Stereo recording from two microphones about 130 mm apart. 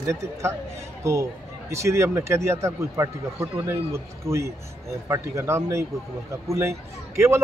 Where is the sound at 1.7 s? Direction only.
20° right (ahead or behind).